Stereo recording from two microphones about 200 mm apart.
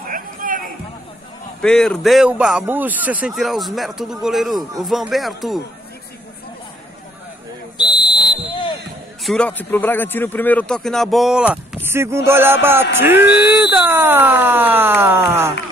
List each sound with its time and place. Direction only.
0.0 s a sound: 45° right (ahead or behind)
1.6 s speech: 5° left (ahead or behind)
7.7 s fire alarm: 20° left (ahead or behind)
9.2 s speech: 5° left (ahead or behind); by 15.5 s 10° right (ahead or behind)